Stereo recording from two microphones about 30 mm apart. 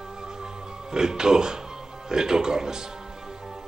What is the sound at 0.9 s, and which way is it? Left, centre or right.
Speech, right.